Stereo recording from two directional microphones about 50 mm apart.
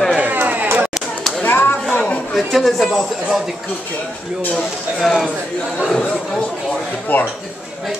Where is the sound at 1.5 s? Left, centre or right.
Left.